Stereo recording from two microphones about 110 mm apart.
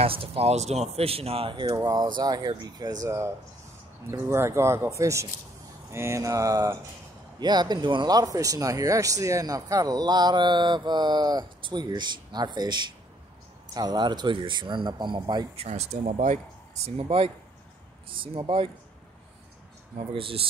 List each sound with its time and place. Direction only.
0.0 s speech: 60° right (ahead or behind)
1.7 s speech: 35° right (ahead or behind)
15.5 s speech: 70° right (ahead or behind); by 16.3 s 90° right
16.9 s speech: 60° right (ahead or behind)
18.1 s speech: 50° right (ahead or behind)
20.1 s speech: 55° right (ahead or behind)